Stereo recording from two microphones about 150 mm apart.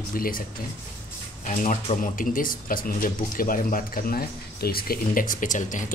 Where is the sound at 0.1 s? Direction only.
70° left (ahead or behind).